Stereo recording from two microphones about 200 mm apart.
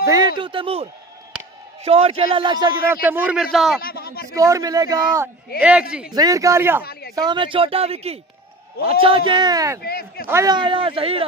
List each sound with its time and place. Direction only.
0.0 s a man's voice: 15° right (ahead or behind); by 3.8 s centre (ahead or behind)
3.8 s speech: 50° left (ahead or behind)
4.3 s a man's voice: 15° right (ahead or behind)
5.6 s speech: 5° right (ahead or behind)
6.1 s a man's voice: 15° right (ahead or behind)
6.8 s speech: 50° left (ahead or behind)
7.2 s a man's voice: 25° right (ahead or behind)
9.8 s speech: 50° left (ahead or behind)
10.2 s a man's voice: 15° right (ahead or behind)